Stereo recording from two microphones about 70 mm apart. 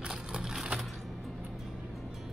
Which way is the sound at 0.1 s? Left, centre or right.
Centre.